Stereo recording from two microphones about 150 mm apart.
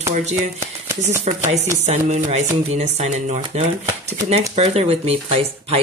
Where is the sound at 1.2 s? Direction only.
50° right (ahead or behind).